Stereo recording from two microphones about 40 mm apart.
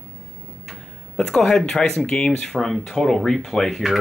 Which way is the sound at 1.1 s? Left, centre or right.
Centre.